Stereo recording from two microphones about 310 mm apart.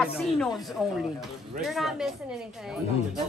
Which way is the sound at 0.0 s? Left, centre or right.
Centre.